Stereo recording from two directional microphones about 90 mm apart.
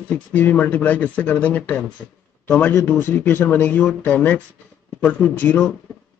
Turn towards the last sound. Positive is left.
turn(degrees=15)  # may be behind; listen again after turning